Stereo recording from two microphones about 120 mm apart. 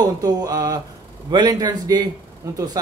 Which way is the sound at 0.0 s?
30° right (ahead or behind).